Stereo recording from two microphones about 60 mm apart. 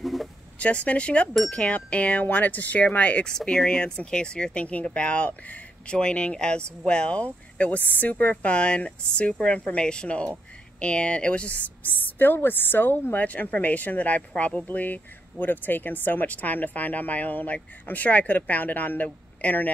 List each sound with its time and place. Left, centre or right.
0.0 s a sound: centre
0.6 s a woman's voice: left
3.3 s a woman's voice: centre